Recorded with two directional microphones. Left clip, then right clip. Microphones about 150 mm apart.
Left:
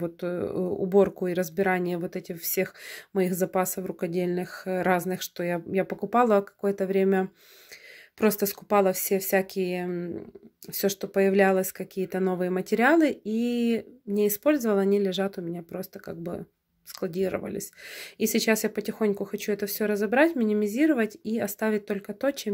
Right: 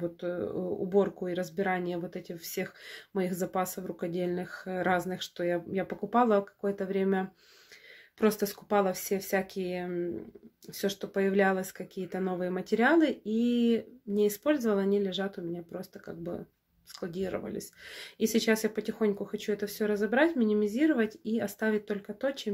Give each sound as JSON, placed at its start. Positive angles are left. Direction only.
{"t": 0.0, "sound": "speech", "side_deg": 50}